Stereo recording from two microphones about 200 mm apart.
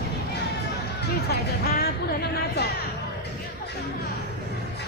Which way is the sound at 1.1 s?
50° left (ahead or behind).